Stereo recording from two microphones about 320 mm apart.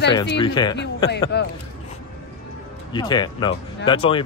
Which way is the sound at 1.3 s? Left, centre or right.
Left.